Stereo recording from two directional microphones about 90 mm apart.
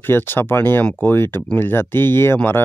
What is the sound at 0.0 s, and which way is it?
Speech, 25° left (ahead or behind).